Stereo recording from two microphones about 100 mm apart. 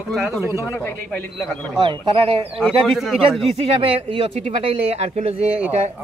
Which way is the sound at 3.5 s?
75° right (ahead or behind).